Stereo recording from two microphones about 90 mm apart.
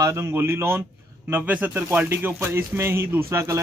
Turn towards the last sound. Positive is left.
turn(degrees=-30)  # may be behind; listen again after turning